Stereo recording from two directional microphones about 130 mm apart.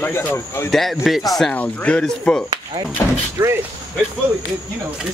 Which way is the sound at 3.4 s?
20° right (ahead or behind).